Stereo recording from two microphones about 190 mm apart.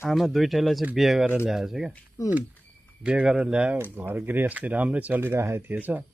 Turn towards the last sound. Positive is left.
turn(degrees=-10)  # may be behind; listen again after turning